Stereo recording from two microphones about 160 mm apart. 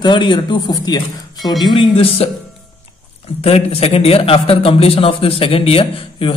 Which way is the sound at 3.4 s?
40° left (ahead or behind).